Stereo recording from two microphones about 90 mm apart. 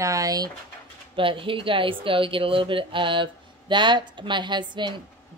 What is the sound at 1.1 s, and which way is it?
A woman's voice, 70° right (ahead or behind).